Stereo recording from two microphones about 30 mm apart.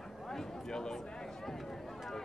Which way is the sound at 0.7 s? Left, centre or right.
Left.